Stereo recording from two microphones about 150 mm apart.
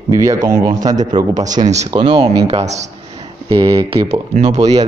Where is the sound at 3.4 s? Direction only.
35° right (ahead or behind).